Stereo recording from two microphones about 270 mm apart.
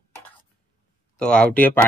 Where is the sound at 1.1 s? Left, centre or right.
Centre.